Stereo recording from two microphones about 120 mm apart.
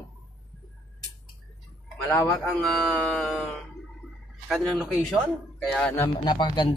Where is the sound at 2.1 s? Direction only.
Centre (ahead or behind).